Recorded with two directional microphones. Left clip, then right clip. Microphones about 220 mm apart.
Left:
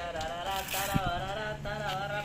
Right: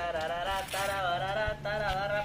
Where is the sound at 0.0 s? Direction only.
40° right (ahead or behind).